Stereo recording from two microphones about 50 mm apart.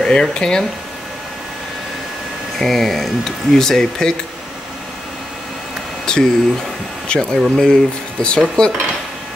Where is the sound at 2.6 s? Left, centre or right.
Centre.